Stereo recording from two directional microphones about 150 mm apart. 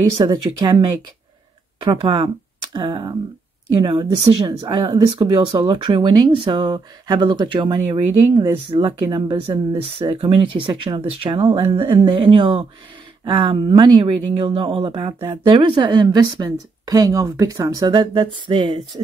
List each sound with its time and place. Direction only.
0.2 s speech: 30° right (ahead or behind)